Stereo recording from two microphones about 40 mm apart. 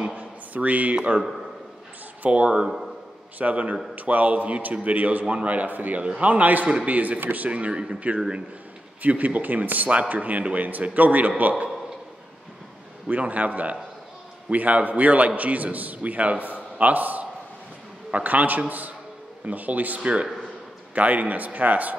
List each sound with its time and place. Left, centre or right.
0.1 s a sound: right
2.2 s a man's voice: right
5.9 s a man's voice: right
6.7 s speech: right
7.2 s a man's voice: right
13.1 s a man's voice: right
20.0 s a man's voice: right